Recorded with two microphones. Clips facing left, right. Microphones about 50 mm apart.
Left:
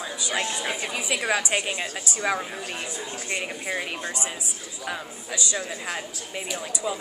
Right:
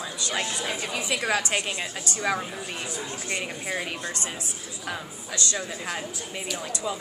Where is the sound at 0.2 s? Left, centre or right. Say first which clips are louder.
Left 1 dB; centre.